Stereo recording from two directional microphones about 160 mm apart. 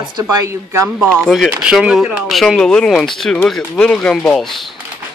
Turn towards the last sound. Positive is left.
turn(degrees=0)  # may be behind; listen again after turning